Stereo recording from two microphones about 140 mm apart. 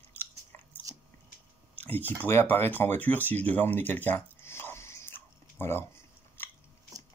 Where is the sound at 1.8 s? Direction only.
15° left (ahead or behind).